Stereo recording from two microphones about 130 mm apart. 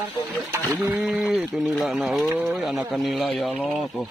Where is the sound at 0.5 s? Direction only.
15° right (ahead or behind).